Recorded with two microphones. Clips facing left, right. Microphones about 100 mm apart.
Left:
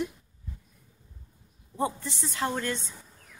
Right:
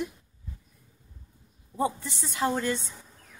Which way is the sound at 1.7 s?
5° right (ahead or behind).